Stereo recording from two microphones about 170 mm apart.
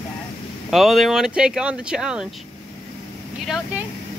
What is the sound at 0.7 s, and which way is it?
Speech, centre (ahead or behind).